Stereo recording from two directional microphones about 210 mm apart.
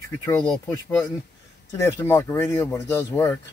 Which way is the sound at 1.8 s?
10° left (ahead or behind).